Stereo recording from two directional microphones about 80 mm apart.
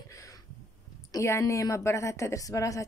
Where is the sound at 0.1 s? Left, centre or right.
Left.